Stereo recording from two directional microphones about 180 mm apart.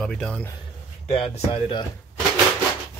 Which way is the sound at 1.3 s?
30° left (ahead or behind).